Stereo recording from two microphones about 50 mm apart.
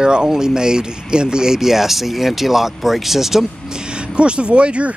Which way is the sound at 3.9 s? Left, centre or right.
Centre.